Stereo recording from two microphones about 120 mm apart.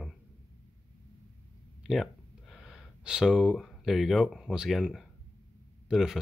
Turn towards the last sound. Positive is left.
turn(degrees=-5)  # may be behind; listen again after turning